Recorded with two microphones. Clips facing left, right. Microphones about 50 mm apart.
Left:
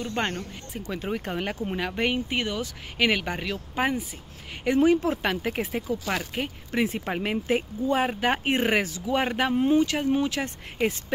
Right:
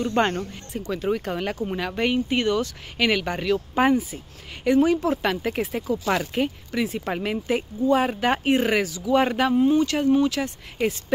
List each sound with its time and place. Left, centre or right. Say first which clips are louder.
0.0 s speech: right 6 dB; centre
1.0 s speech: right 4 dB; centre
4.6 s speech: right 2 dB; centre
6.0 s speech: right 6 dB; centre
6.7 s speech: even; left
7.1 s speech: right 1 dB; centre
8.5 s speech: right 3 dB; left
9.8 s speech: right 5 dB; centre